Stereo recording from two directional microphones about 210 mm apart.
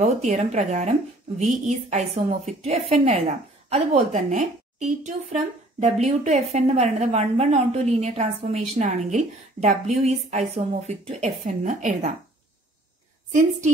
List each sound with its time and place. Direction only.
0.0 s a woman's voice: 30° right (ahead or behind)